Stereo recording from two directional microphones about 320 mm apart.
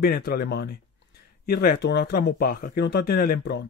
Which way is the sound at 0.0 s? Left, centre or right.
Left.